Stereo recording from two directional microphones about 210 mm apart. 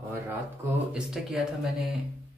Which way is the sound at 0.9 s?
Centre (ahead or behind).